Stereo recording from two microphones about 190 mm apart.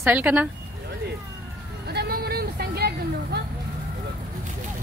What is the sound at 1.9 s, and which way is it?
Vehicle, 55° right (ahead or behind).